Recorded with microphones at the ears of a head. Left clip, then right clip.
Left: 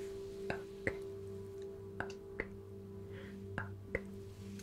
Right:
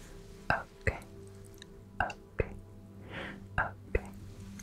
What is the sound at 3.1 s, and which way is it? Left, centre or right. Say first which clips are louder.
Music: right 10 dB; right.